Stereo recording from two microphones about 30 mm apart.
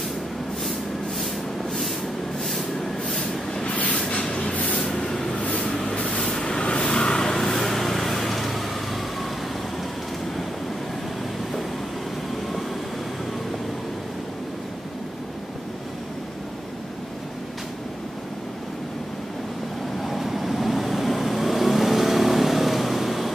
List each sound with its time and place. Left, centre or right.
3.6 s vehicle: left
4.3 s a sound: left
4.7 s vehicle: centre
5.3 s vehicle: left
6.2 s vehicle: left
6.6 s vehicle: left
6.9 s vehicle: left
7.3 s vehicle: centre
20.0 s vehicle: centre